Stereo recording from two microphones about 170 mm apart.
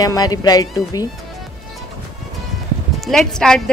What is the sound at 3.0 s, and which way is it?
Speech, centre (ahead or behind).